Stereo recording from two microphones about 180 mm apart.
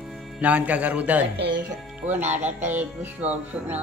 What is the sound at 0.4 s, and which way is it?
Music, 5° right (ahead or behind).